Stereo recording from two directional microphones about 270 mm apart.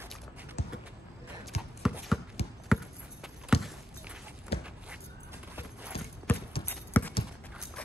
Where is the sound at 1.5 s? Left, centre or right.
Left.